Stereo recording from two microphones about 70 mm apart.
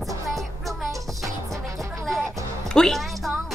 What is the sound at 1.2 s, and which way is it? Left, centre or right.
Music, right.